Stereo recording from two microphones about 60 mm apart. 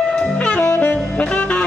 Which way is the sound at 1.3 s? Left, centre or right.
Centre.